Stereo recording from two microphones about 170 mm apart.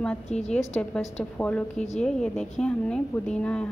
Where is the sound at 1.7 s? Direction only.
45° left (ahead or behind).